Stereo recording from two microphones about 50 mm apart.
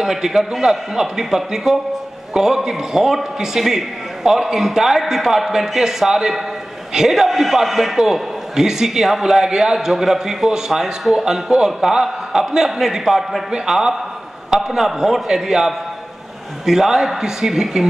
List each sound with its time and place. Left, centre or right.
0.0 s a man's voice: centre